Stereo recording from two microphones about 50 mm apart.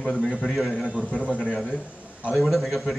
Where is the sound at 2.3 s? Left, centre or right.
Centre.